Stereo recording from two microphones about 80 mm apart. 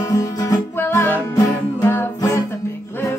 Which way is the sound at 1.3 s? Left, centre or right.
Left.